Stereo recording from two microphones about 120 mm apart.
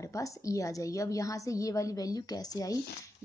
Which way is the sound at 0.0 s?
25° left (ahead or behind).